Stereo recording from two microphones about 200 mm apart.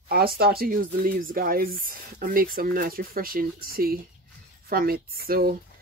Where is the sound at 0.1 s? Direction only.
50° right (ahead or behind).